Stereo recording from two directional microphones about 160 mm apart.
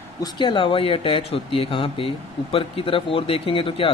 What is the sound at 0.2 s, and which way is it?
Speech, 30° left (ahead or behind).